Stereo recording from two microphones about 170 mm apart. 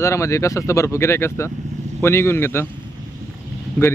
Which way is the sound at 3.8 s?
10° left (ahead or behind).